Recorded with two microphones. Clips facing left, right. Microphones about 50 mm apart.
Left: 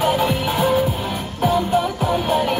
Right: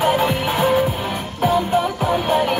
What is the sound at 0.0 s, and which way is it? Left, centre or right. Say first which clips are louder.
Music: right 1 dB; right.